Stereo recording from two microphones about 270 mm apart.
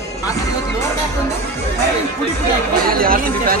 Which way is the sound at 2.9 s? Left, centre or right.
Right.